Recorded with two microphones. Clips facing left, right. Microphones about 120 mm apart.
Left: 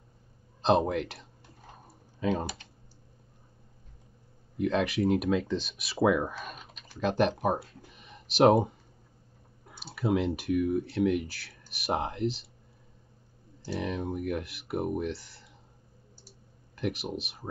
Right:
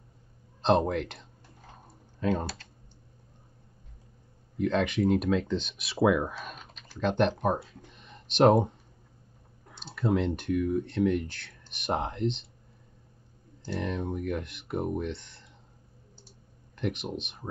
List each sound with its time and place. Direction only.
0.6 s speech: 5° left (ahead or behind)
1.9 s typing: 5° left (ahead or behind)
2.4 s speech: 15° left (ahead or behind)
4.6 s speech: 5° left (ahead or behind)
9.9 s speech: 5° left (ahead or behind)
13.7 s speech: 5° left (ahead or behind)
16.7 s speech: 5° left (ahead or behind)